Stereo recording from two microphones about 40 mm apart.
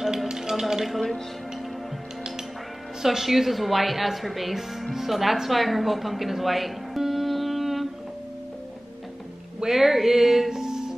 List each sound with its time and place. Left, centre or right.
0.0 s a sound: centre
3.0 s a woman's voice: centre
9.6 s speech: centre